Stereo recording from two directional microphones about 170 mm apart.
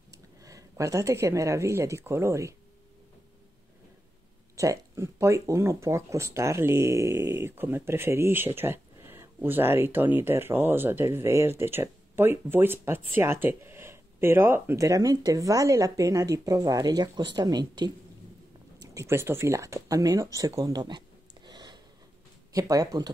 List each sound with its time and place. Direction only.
0.1 s speech: 20° right (ahead or behind)
4.6 s speech: 15° right (ahead or behind)
20.3 s a sound: 20° right (ahead or behind)
22.5 s speech: 20° right (ahead or behind)